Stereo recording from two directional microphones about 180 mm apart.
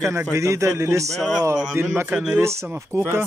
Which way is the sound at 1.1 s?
Centre (ahead or behind).